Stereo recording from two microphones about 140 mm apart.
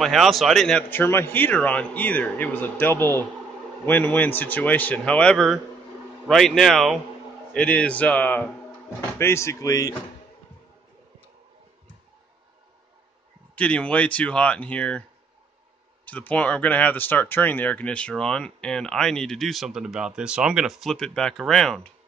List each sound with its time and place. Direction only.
0.0 s speech: centre (ahead or behind); by 9.9 s 25° left (ahead or behind)
13.6 s speech: 10° left (ahead or behind)
16.1 s speech: 10° left (ahead or behind)